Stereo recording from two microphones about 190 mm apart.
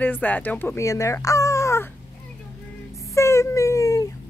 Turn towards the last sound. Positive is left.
turn(degrees=15)  # may be behind; listen again after turning